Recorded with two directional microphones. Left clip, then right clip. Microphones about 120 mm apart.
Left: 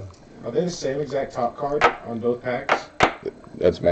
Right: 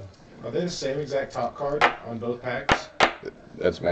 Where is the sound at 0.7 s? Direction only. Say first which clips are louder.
Left 2 dB; 10° right (ahead or behind).